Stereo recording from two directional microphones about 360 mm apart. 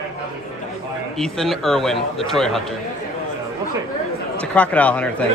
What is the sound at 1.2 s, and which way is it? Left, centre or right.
A man's voice, centre.